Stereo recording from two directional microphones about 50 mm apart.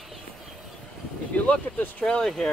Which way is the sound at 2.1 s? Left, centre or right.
Centre.